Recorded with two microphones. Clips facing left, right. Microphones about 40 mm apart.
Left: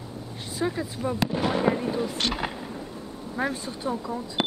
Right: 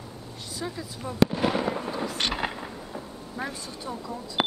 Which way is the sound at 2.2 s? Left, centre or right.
Centre.